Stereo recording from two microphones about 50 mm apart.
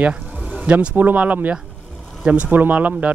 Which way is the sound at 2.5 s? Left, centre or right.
Right.